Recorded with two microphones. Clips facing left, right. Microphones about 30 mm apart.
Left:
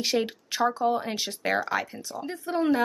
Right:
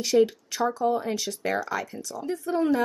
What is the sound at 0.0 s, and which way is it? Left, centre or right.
Speech, left.